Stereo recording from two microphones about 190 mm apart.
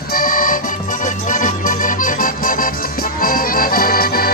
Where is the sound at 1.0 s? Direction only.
45° left (ahead or behind).